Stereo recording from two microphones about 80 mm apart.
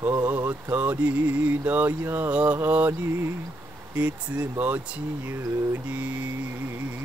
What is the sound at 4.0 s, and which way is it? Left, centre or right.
Speech, centre.